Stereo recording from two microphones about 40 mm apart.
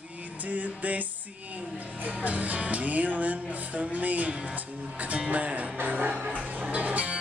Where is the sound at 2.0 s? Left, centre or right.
Right.